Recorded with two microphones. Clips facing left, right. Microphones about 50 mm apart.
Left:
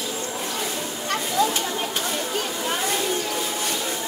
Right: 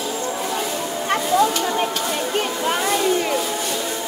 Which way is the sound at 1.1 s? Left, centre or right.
Right.